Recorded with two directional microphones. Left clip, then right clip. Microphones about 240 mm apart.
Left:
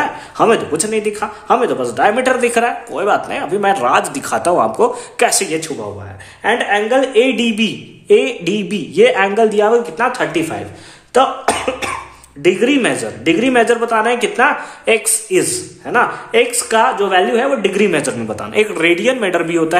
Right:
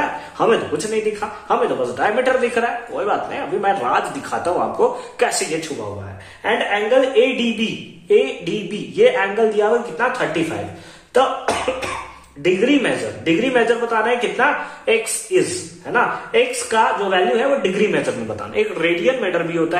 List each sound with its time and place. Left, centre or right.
0.4 s speech: left
6.4 s speech: left
11.1 s cough: left
12.4 s speech: left